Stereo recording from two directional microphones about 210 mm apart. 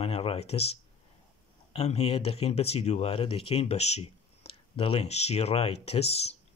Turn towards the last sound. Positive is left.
turn(degrees=30)  # may be behind; listen again after turning